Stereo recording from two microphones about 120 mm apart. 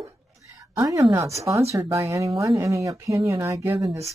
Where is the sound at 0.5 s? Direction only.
25° right (ahead or behind).